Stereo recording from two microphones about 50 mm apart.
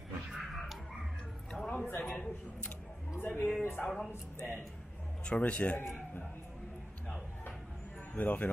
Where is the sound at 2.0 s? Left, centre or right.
Centre.